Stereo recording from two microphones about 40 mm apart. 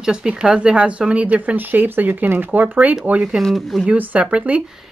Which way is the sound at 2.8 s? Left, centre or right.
Right.